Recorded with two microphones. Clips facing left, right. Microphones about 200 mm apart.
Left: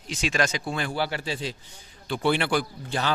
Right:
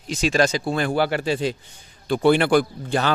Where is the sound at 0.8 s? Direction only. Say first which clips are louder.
Right 8 dB; 55° right (ahead or behind).